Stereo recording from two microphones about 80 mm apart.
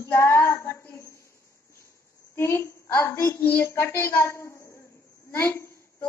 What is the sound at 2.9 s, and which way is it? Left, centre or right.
A woman's voice, left.